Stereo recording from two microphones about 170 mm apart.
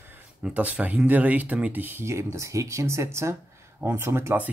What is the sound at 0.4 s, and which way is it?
Speech, 10° right (ahead or behind).